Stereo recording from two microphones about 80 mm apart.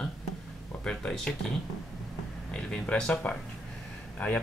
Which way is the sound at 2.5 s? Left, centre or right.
Centre.